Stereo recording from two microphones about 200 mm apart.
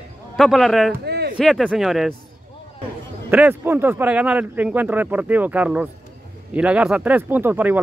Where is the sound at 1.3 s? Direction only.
Centre (ahead or behind).